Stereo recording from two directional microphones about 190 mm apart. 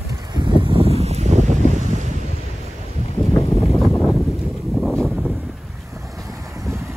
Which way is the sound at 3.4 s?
25° left (ahead or behind).